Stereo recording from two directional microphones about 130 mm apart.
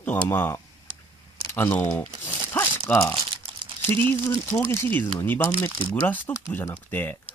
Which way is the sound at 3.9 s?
20° left (ahead or behind).